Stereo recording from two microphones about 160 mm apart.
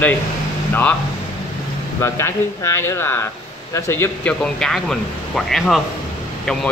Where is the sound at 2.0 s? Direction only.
20° left (ahead or behind).